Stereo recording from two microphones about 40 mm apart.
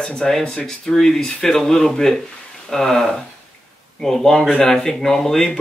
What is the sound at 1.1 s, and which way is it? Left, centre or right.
Speech, centre.